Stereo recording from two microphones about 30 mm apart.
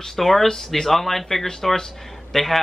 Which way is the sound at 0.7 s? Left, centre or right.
Centre.